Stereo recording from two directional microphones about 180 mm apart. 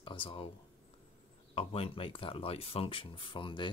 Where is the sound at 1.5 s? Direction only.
30° left (ahead or behind).